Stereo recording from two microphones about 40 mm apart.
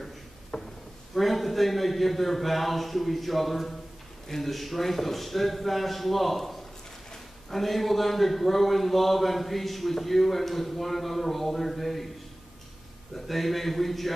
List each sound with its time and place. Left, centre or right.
0.5 s a sound: left
1.1 s speech: centre
7.5 s speech: centre
13.1 s speech: centre